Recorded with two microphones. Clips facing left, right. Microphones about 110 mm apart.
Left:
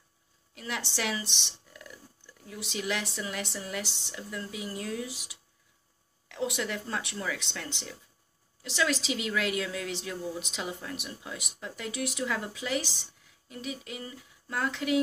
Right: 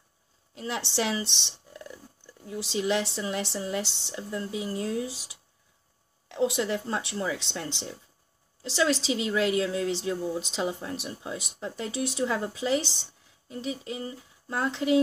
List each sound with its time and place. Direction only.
0.6 s a woman's voice: 25° right (ahead or behind)